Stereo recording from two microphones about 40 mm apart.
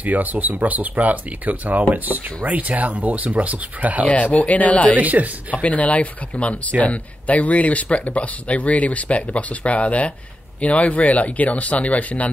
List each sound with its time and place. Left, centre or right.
0.0 s speech: right
4.1 s speech: left
4.9 s speech: right
5.6 s speech: left